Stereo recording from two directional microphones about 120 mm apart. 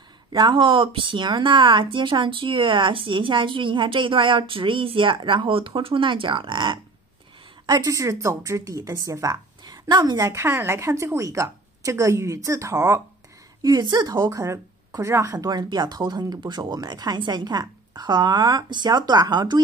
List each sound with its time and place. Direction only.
0.3 s speech: 40° right (ahead or behind)
7.6 s a woman's voice: 30° right (ahead or behind)
13.6 s speech: 35° right (ahead or behind)